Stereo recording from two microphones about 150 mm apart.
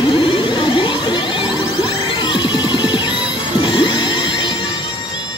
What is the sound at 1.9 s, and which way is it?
Music, 30° left (ahead or behind).